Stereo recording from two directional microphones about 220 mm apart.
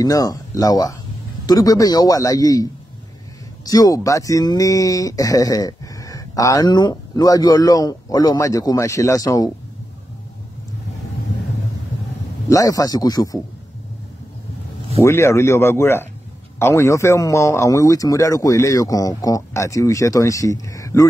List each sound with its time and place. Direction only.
0.0 s speech: 15° left (ahead or behind)
12.4 s speech: 15° left (ahead or behind)
15.0 s speech: 10° left (ahead or behind)